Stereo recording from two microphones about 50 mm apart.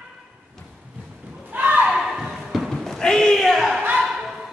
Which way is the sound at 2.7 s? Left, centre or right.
Centre.